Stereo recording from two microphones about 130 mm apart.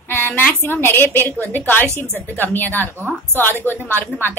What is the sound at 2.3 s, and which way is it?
A woman's voice, 15° left (ahead or behind).